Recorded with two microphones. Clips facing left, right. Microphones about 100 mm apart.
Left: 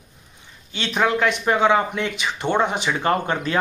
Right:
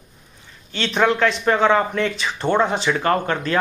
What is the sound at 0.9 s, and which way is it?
A man's voice, 5° left (ahead or behind).